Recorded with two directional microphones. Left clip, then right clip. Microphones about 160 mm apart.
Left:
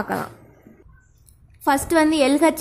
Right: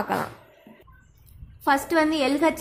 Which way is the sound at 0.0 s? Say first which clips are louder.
Even; 25° left (ahead or behind).